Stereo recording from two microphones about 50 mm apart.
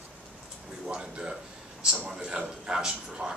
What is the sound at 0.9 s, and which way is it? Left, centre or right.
A man's voice, centre.